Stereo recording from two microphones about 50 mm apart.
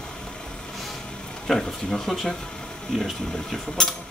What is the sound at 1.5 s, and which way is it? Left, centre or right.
Speech, centre.